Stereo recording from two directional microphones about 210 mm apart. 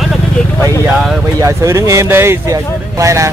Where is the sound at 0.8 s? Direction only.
10° right (ahead or behind).